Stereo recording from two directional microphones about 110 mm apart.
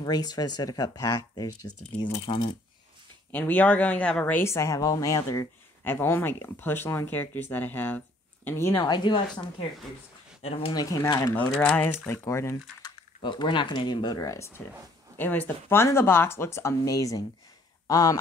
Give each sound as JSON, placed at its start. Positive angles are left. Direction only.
{"t": 0.0, "sound": "speech", "side_deg": 35}
{"t": 2.2, "sound": "speech", "side_deg": 50}
{"t": 3.3, "sound": "speech", "side_deg": 15}
{"t": 5.9, "sound": "speech", "side_deg": 20}
{"t": 8.8, "sound": "speech", "side_deg": 45}
{"t": 10.4, "sound": "speech", "side_deg": 60}
{"t": 10.7, "sound": "speech", "side_deg": 35}
{"t": 11.6, "sound": "speech", "side_deg": 15}
{"t": 12.8, "sound": "speech", "side_deg": 45}